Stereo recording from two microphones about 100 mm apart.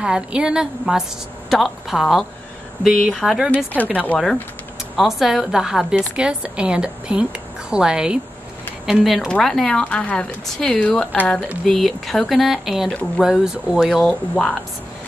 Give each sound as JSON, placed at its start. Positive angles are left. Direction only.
{"t": 0.0, "sound": "a woman's voice", "side_deg": -10}
{"t": 3.5, "sound": "a woman's voice", "side_deg": 15}
{"t": 4.9, "sound": "a woman's voice", "side_deg": -5}
{"t": 11.6, "sound": "a woman's voice", "side_deg": 0}